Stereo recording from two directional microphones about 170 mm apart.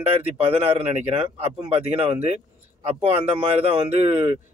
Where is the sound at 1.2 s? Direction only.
35° right (ahead or behind).